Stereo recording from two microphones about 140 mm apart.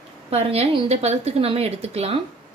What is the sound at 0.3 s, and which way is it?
A woman's voice, 45° right (ahead or behind).